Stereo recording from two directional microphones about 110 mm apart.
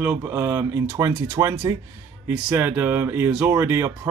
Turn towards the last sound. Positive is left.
turn(degrees=-25)  # may be behind; listen again after turning